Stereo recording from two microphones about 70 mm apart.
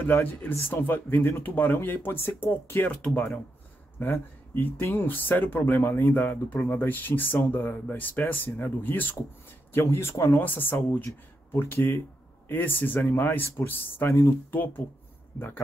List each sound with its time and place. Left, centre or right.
0.0 s speech: left
2.9 s speech: centre
4.0 s speech: left
14.0 s speech: left
14.5 s speech: left